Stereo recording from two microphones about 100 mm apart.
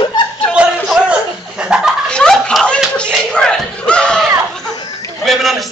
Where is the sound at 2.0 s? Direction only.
10° left (ahead or behind).